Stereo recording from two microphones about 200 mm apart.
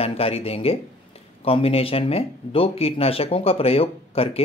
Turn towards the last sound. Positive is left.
turn(degrees=30)  # may be behind; listen again after turning